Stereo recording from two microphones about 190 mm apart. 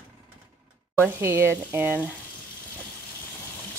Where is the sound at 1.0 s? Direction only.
15° right (ahead or behind).